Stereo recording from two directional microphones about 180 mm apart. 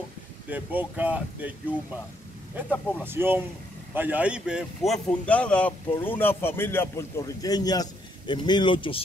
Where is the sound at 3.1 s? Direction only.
10° right (ahead or behind).